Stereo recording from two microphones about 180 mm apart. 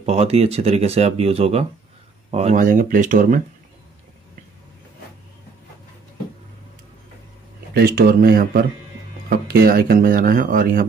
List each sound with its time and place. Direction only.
0.0 s speech: 35° right (ahead or behind)
2.5 s speech: 50° right (ahead or behind)
7.7 s speech: 55° right (ahead or behind)